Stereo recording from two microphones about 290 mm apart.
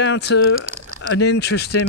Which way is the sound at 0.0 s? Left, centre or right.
Left.